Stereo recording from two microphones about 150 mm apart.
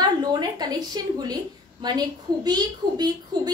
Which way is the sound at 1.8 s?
30° right (ahead or behind).